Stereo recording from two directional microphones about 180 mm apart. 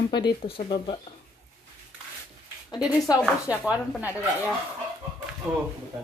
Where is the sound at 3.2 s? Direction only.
5° right (ahead or behind).